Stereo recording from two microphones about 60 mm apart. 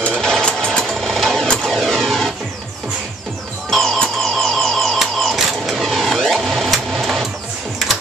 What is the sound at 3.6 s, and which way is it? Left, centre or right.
Music, centre.